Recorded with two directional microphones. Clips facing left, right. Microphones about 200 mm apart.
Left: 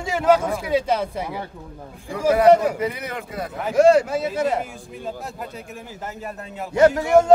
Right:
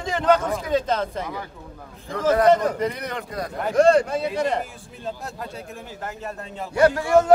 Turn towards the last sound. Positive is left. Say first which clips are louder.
# left 2 dB
turn(degrees=20)  # may be behind; listen again after turning